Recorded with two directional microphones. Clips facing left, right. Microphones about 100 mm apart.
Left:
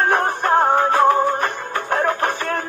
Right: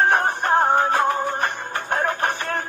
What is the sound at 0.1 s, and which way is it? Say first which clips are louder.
Music: left 2 dB; 35° left (ahead or behind).